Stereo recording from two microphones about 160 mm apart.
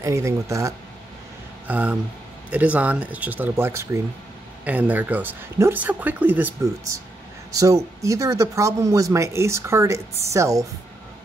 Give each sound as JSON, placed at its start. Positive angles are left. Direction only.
{"t": 0.0, "sound": "speech", "side_deg": -20}